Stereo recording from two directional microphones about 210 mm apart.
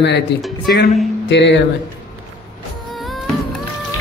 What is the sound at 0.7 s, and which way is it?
Speech, 50° left (ahead or behind).